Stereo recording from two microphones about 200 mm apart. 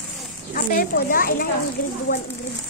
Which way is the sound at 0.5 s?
45° left (ahead or behind).